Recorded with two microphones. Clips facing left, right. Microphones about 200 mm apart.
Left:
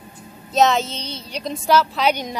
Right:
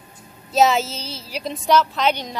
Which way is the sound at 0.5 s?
5° right (ahead or behind).